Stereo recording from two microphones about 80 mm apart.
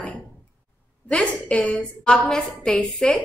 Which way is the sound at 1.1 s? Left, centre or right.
Centre.